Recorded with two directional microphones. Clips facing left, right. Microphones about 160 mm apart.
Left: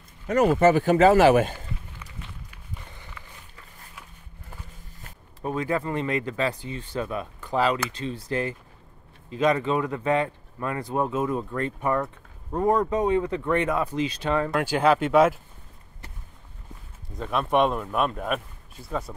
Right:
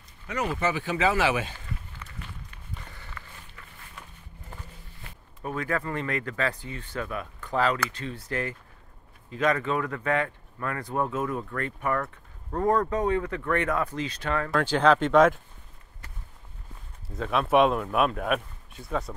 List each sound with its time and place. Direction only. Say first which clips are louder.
0.3 s speech: left 10 dB; 50° left (ahead or behind)
2.5 s walk: left 1 dB; 15° left (ahead or behind)
5.4 s speech: left 3 dB; 20° left (ahead or behind)
7.3 s speech: left 2 dB; 15° left (ahead or behind)
17.1 s a man's voice: right 1 dB; centre (ahead or behind)